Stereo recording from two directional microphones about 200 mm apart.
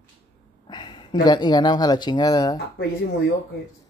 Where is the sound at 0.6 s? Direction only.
20° left (ahead or behind).